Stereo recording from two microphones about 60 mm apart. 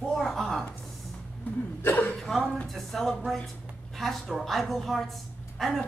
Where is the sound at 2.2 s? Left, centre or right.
Centre.